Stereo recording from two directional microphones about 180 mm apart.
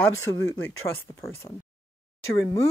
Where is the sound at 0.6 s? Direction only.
15° left (ahead or behind).